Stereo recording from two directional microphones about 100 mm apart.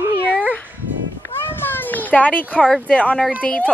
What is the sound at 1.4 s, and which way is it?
Children playing, 20° left (ahead or behind).